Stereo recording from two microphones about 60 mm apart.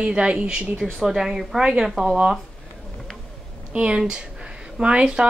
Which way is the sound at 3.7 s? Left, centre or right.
Centre.